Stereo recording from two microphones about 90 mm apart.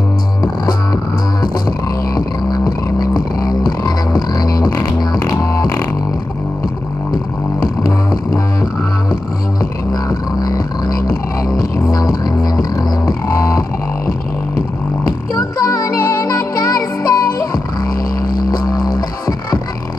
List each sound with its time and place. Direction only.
2.1 s music: 45° left (ahead or behind)
10.0 s music: 45° left (ahead or behind)
15.3 s music: 40° left (ahead or behind)
18.5 s music: 45° left (ahead or behind)